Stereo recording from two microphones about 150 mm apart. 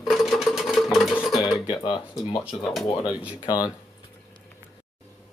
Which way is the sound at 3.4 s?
25° left (ahead or behind).